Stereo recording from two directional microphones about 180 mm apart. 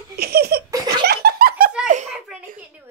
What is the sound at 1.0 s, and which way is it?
Laughter, 60° right (ahead or behind).